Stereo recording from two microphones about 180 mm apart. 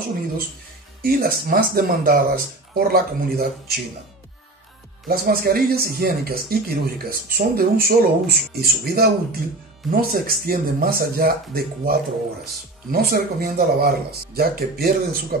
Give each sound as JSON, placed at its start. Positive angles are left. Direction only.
{"t": 1.0, "sound": "speech", "side_deg": -55}
{"t": 5.0, "sound": "speech", "side_deg": -55}
{"t": 12.9, "sound": "speech", "side_deg": -60}